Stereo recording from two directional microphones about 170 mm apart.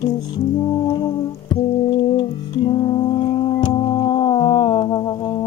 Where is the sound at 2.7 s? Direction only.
25° left (ahead or behind).